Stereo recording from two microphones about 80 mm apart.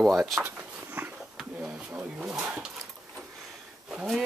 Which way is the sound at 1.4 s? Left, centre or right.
Centre.